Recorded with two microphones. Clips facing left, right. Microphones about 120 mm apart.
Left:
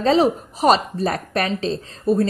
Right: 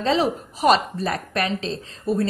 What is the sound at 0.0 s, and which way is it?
Speech, 40° left (ahead or behind).